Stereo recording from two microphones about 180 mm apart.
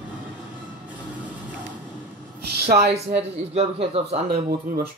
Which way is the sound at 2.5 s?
60° right (ahead or behind).